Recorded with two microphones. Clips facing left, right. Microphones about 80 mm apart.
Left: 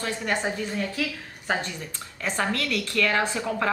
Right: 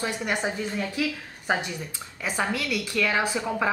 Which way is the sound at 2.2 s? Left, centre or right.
Centre.